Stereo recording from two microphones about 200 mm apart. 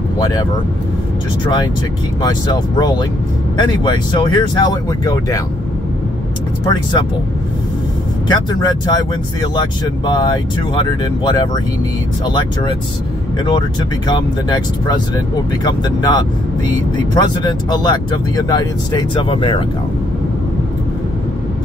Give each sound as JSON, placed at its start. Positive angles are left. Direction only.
{"t": 1.4, "sound": "speech", "side_deg": 20}
{"t": 3.5, "sound": "speech", "side_deg": 20}
{"t": 6.7, "sound": "speech", "side_deg": 20}
{"t": 8.3, "sound": "speech", "side_deg": 20}